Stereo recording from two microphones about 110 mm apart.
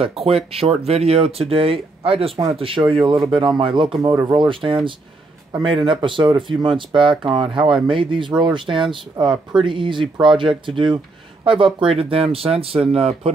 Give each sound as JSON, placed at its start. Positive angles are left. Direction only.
{"t": 0.0, "sound": "speech", "side_deg": -65}
{"t": 4.0, "sound": "speech", "side_deg": -25}
{"t": 4.3, "sound": "speech", "side_deg": -50}